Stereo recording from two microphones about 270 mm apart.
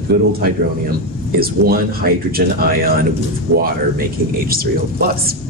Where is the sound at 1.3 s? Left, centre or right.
Right.